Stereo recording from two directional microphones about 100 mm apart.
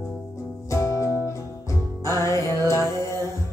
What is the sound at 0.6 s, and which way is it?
Music, 30° left (ahead or behind).